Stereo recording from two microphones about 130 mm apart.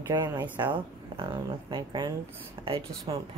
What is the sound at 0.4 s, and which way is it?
Speech, 35° right (ahead or behind).